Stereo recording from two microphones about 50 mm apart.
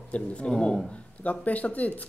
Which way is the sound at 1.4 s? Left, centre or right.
Left.